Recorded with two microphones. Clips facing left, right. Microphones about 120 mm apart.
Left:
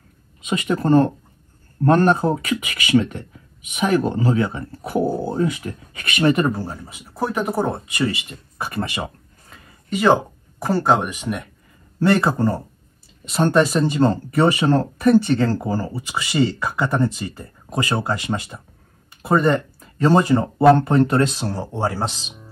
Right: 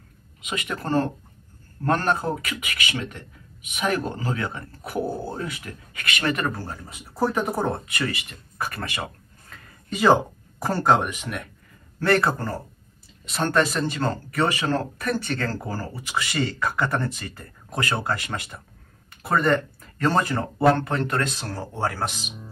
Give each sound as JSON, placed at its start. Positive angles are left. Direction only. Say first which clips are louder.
{"t": 0.5, "sound": "speech", "louder": "left 9 dB", "side_deg": 30}
{"t": 6.5, "sound": "speech", "louder": "left 6 dB", "side_deg": 5}
{"t": 8.3, "sound": "speech", "louder": "left 1 dB", "side_deg": 20}
{"t": 9.7, "sound": "a sound", "louder": "left 2 dB", "side_deg": 0}
{"t": 10.6, "sound": "speech", "louder": "left 2 dB", "side_deg": 5}
{"t": 13.3, "sound": "speech", "louder": "left 6 dB", "side_deg": 20}
{"t": 17.4, "sound": "speech", "louder": "left 3 dB", "side_deg": 20}